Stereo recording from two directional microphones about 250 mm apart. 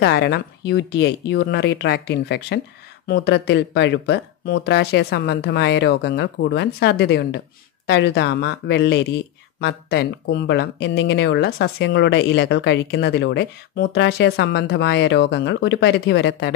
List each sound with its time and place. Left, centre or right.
0.0 s speech: left